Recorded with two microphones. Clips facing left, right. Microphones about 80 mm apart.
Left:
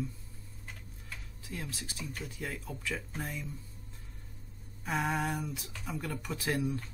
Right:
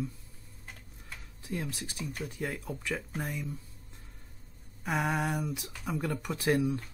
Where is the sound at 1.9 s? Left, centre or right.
Centre.